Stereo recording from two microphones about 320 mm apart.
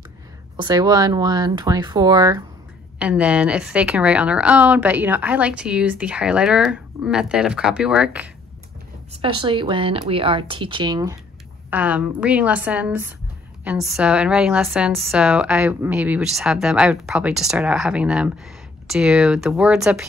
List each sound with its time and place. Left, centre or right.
0.6 s a woman's voice: centre
9.2 s a woman's voice: centre